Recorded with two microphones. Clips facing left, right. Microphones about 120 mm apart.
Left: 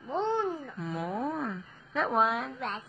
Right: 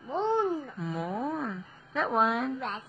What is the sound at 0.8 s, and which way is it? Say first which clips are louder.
Speech: left 3 dB; centre (ahead or behind).